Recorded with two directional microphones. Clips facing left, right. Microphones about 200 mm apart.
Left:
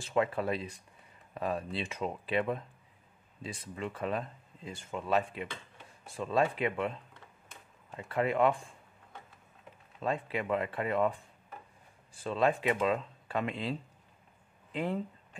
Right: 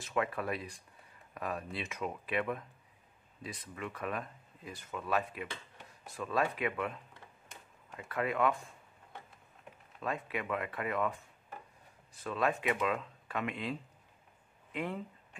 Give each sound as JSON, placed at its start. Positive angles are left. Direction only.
{"t": 0.0, "sound": "speech", "side_deg": 30}
{"t": 10.0, "sound": "speech", "side_deg": 30}